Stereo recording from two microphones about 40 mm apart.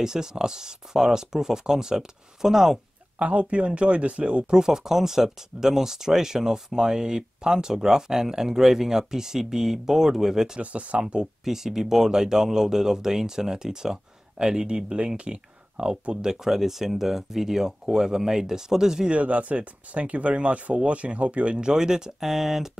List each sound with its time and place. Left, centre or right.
0.0 s speech: centre
3.2 s speech: right
4.6 s speech: centre
10.6 s speech: right
11.4 s speech: centre
19.0 s speech: right; by 22.1 s centre
22.2 s speech: centre